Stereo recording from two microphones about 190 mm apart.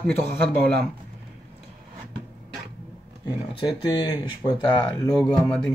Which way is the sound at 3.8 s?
20° left (ahead or behind).